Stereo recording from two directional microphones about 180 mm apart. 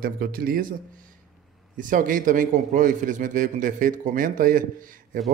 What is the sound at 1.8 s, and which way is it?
A man's voice, 50° right (ahead or behind).